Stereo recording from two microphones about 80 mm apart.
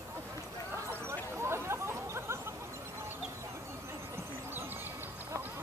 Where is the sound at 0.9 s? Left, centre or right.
Right.